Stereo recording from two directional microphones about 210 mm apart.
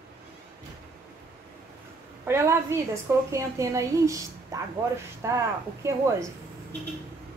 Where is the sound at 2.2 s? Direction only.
10° right (ahead or behind).